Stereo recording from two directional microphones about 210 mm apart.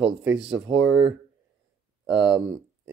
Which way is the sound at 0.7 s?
60° right (ahead or behind).